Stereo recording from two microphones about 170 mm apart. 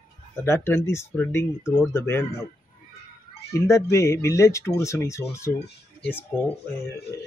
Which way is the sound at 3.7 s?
15° left (ahead or behind).